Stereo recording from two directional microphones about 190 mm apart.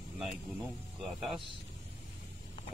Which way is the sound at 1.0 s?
Centre (ahead or behind).